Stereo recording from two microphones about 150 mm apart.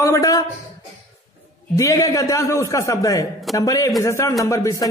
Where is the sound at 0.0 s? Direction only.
20° left (ahead or behind).